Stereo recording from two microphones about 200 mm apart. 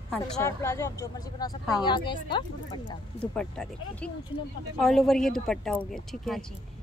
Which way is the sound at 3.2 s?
5° left (ahead or behind).